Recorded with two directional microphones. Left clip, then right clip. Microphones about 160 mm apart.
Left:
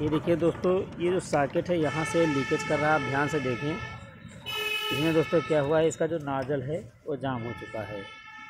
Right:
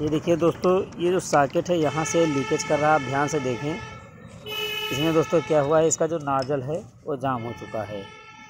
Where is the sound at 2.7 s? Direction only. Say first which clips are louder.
Right 6 dB; 5° right (ahead or behind).